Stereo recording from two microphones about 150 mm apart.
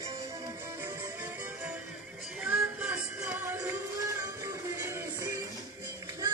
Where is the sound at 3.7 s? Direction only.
20° right (ahead or behind).